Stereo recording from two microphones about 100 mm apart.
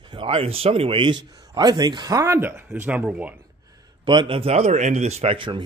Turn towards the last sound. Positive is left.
turn(degrees=-55)  # may be behind; listen again after turning